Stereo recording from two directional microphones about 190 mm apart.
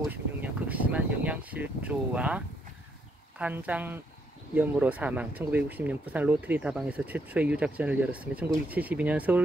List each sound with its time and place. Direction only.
0.1 s speech: 10° right (ahead or behind)